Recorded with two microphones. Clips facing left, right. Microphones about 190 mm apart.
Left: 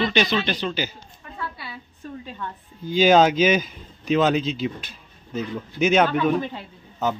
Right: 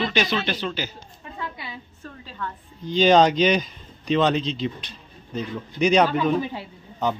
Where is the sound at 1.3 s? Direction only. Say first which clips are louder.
Even; 15° right (ahead or behind).